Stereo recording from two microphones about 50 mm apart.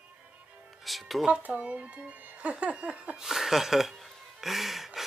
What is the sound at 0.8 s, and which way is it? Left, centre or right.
Music, centre.